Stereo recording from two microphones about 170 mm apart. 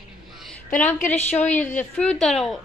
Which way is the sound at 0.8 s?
10° left (ahead or behind).